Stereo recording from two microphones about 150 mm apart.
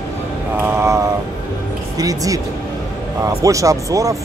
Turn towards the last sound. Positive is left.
turn(degrees=-20)  # may be behind; listen again after turning